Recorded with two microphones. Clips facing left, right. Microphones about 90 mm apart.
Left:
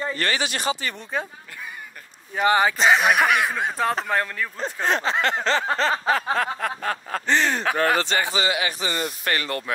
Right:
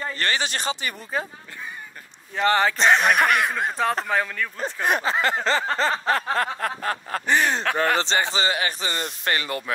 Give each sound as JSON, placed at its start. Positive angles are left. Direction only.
{"t": 0.2, "sound": "speech", "side_deg": -30}
{"t": 1.1, "sound": "speech", "side_deg": 0}
{"t": 2.3, "sound": "speech", "side_deg": 10}
{"t": 7.2, "sound": "speech", "side_deg": -10}
{"t": 7.6, "sound": "speech", "side_deg": 5}
{"t": 8.0, "sound": "a man's voice", "side_deg": -25}
{"t": 8.4, "sound": "speech", "side_deg": -35}
{"t": 9.4, "sound": "speech", "side_deg": -5}